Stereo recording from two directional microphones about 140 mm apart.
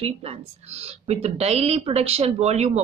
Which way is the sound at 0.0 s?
45° right (ahead or behind).